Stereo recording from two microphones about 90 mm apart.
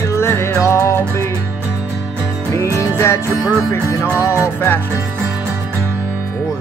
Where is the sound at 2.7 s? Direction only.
30° left (ahead or behind).